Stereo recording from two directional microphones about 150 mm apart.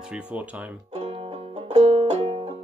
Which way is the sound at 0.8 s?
45° right (ahead or behind).